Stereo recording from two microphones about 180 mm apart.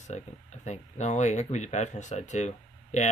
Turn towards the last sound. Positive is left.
turn(degrees=40)  # may be behind; listen again after turning